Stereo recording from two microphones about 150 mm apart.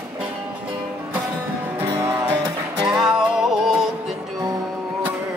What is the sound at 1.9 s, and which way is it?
Music, 25° right (ahead or behind).